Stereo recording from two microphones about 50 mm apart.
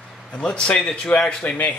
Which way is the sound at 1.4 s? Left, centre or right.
Left.